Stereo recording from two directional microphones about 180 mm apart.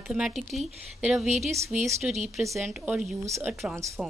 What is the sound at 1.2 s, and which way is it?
Speech, 40° right (ahead or behind).